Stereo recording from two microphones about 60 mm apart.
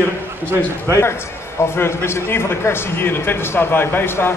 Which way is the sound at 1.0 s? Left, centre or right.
Left.